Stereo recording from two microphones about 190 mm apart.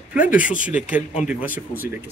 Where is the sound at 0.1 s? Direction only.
5° right (ahead or behind).